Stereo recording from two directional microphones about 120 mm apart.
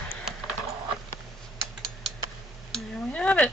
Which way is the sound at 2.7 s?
10° left (ahead or behind).